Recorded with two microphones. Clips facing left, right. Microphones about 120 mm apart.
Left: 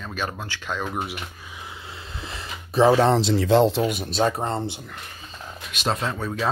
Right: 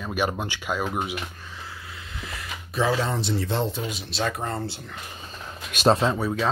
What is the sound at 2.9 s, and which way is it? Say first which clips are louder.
Speech: left 7 dB; 75° left (ahead or behind).